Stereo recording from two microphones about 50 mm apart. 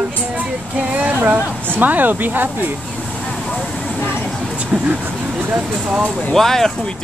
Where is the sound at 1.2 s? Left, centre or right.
Right.